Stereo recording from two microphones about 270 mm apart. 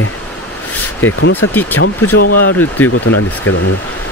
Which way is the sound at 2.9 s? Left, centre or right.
Left.